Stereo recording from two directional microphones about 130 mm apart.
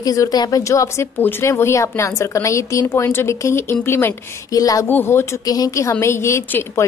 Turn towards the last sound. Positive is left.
turn(degrees=20)  # may be behind; listen again after turning